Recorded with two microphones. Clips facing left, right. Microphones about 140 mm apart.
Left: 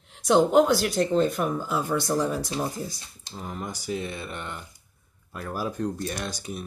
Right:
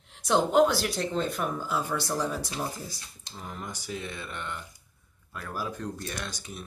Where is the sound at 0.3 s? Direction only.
Centre (ahead or behind).